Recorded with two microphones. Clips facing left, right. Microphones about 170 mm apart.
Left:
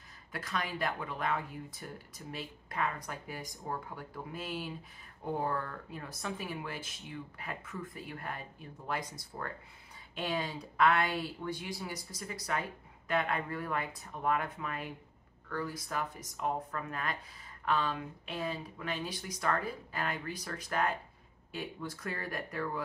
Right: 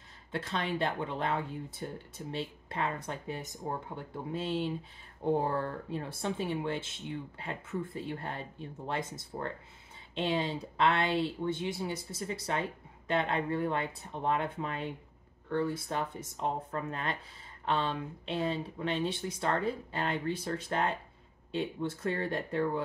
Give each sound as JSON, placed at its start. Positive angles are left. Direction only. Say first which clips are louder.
{"t": 0.3, "sound": "speech", "louder": "right 4 dB", "side_deg": -25}